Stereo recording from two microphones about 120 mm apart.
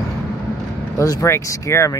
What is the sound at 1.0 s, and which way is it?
Speech, 25° left (ahead or behind).